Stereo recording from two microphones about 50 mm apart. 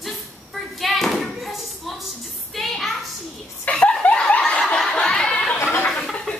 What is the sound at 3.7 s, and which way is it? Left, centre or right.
Snicker, left.